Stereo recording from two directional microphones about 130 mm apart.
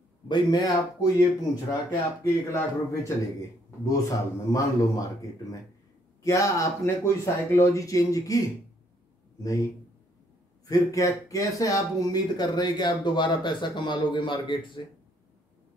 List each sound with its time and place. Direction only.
0.3 s speech: 30° left (ahead or behind)
6.2 s speech: 25° left (ahead or behind)
10.7 s speech: 25° left (ahead or behind)